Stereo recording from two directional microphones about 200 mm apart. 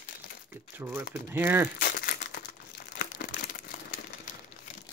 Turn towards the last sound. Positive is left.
turn(degrees=45)  # may be behind; listen again after turning